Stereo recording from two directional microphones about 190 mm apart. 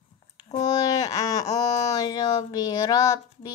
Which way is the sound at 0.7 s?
20° left (ahead or behind).